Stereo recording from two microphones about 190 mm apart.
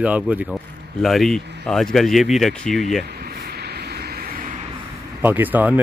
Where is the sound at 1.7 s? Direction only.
Centre (ahead or behind).